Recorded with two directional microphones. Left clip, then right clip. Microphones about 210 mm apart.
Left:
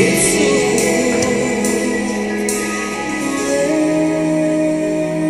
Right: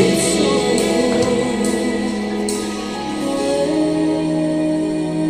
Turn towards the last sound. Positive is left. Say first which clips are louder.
# left 2 dB
turn(degrees=-30)  # may be behind; listen again after turning